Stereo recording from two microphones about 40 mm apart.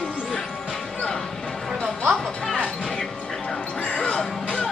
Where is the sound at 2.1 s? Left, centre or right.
Centre.